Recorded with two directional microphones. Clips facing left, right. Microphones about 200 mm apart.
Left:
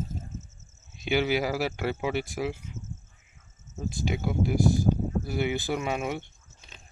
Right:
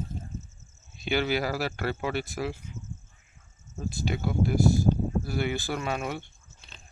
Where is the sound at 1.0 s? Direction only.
10° left (ahead or behind).